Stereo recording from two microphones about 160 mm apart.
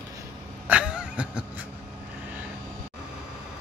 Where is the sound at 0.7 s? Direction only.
5° right (ahead or behind).